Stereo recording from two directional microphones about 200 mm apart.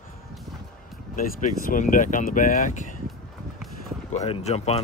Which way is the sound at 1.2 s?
45° left (ahead or behind).